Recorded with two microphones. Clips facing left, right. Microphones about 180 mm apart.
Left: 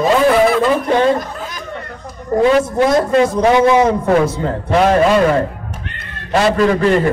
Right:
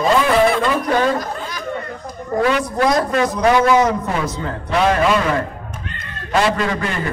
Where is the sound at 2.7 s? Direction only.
25° left (ahead or behind).